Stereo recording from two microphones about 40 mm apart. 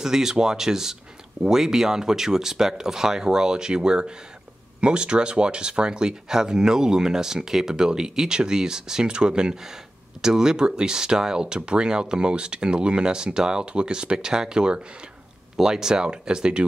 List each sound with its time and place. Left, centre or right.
0.0 s speech: centre